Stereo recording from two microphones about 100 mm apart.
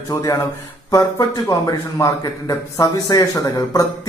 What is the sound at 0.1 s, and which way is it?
Speech, 40° left (ahead or behind).